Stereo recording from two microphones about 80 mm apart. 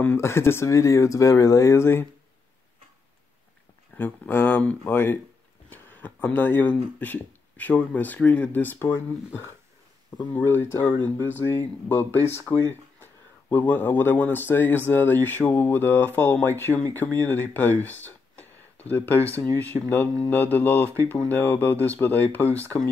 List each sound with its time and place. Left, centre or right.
0.0 s speech: left
3.9 s speech: left